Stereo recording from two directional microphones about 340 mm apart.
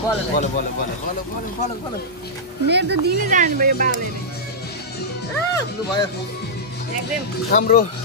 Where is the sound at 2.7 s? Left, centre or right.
Right.